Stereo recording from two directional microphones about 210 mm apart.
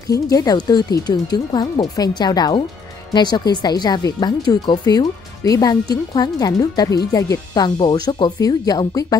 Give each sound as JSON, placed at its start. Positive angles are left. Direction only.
{"t": 0.1, "sound": "speech", "side_deg": 15}